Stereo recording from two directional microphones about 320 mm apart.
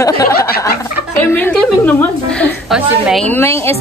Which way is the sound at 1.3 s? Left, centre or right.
Centre.